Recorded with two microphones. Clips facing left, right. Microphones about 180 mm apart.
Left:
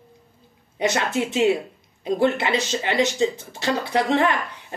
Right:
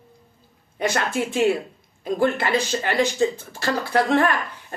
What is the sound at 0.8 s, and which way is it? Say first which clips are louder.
Speech: left 1 dB; 20° left (ahead or behind).